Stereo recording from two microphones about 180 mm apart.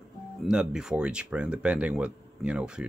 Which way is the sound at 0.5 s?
5° right (ahead or behind).